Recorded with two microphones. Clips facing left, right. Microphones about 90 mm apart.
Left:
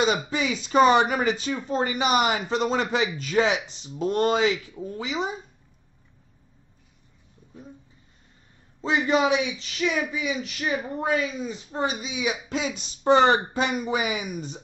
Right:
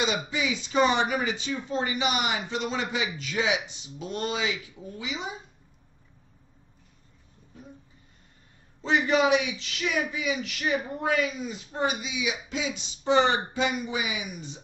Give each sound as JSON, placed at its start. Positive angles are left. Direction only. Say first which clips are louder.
{"t": 0.0, "sound": "speech", "louder": "left 4 dB", "side_deg": 45}
{"t": 8.9, "sound": "speech", "louder": "left 1 dB", "side_deg": 25}